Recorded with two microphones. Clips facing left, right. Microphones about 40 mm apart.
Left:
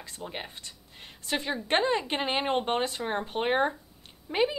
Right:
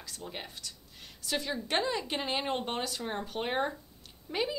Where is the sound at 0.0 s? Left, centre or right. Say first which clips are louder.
Left 4 dB; left.